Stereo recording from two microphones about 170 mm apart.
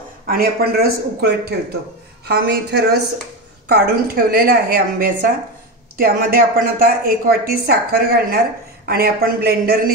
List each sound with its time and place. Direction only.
0.3 s a man's voice: 65° right (ahead or behind)